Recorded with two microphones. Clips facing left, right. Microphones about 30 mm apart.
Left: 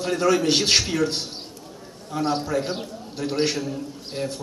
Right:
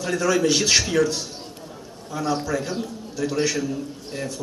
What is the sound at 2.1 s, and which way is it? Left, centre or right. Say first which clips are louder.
A man's voice: even; left.